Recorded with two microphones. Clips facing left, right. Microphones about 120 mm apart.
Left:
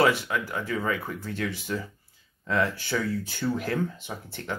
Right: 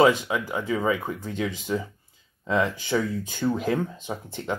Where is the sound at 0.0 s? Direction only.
15° right (ahead or behind).